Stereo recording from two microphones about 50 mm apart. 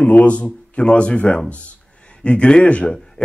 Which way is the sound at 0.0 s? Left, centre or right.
Left.